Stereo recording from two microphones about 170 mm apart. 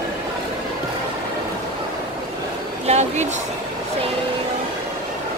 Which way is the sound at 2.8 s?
40° right (ahead or behind).